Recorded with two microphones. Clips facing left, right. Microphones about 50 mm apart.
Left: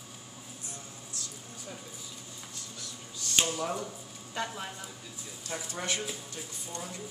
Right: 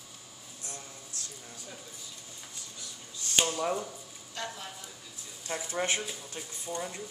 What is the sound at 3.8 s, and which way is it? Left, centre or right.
Speech, centre.